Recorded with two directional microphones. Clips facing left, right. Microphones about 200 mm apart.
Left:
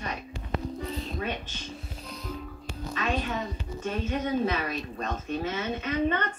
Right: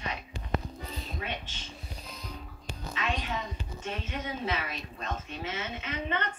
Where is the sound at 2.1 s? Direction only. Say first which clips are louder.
Left 8 dB; centre (ahead or behind).